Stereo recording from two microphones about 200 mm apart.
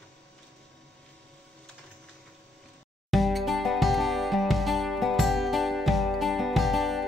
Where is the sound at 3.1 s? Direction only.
Centre (ahead or behind).